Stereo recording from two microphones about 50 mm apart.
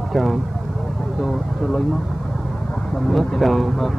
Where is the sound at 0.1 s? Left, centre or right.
Centre.